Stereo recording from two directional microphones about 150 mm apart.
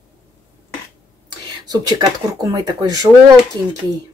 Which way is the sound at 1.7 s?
25° right (ahead or behind).